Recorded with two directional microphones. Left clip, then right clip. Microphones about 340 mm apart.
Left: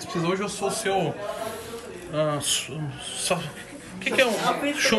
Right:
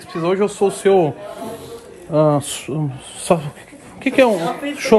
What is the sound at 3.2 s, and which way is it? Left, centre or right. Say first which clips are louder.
A woman's voice: right 10 dB; centre.